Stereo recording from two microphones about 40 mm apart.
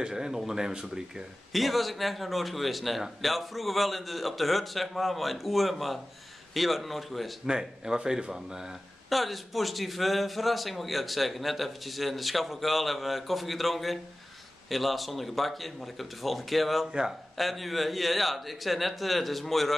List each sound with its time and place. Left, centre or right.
0.0 s speech: centre
1.5 s a man's voice: centre
7.4 s speech: centre
9.1 s a man's voice: centre